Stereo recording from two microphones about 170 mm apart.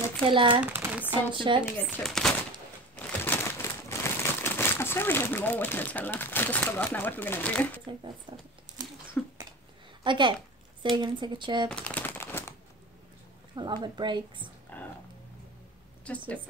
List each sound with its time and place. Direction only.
0.2 s speech: 30° right (ahead or behind)
0.7 s a sound: 10° right (ahead or behind)
1.3 s speech: 30° right (ahead or behind)
1.9 s speech: centre (ahead or behind)
3.3 s speech: 15° left (ahead or behind)
8.3 s speech: 30° right (ahead or behind)
9.2 s a sound: 10° left (ahead or behind)
10.0 s speech: 30° right (ahead or behind)
11.7 s a sound: 10° left (ahead or behind)
13.6 s speech: 25° right (ahead or behind)
14.7 s a sound: 10° left (ahead or behind)
16.0 s a woman's voice: 10° left (ahead or behind)